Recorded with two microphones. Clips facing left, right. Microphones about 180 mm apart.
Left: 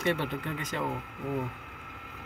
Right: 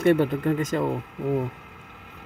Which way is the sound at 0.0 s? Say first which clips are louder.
Right 10 dB; 50° right (ahead or behind).